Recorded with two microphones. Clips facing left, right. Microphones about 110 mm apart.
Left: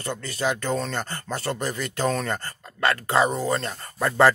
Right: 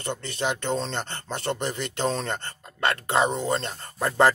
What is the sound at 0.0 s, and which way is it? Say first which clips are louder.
Speech: left 2 dB; 25° right (ahead or behind).